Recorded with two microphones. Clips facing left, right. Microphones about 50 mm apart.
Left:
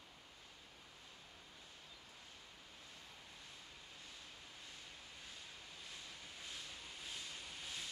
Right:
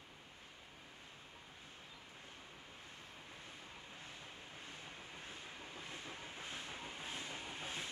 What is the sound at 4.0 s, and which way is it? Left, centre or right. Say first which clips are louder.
Vehicle: right 4 dB; right.